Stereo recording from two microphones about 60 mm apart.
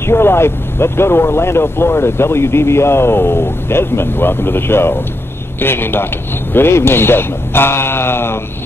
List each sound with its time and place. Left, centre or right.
0.0 s speech: left